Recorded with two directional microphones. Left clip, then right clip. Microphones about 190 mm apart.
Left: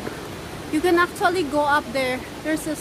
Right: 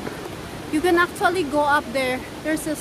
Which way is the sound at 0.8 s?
5° left (ahead or behind).